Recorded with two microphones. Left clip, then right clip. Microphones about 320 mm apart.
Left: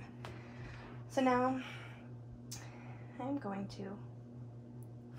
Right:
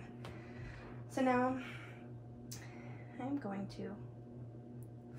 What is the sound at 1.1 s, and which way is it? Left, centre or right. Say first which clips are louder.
Speech: left 2 dB; centre.